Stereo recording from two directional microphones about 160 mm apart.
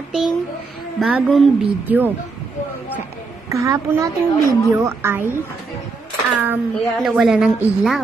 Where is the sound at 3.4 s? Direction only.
20° right (ahead or behind).